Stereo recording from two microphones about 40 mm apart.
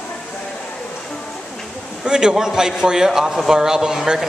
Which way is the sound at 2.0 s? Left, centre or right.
Centre.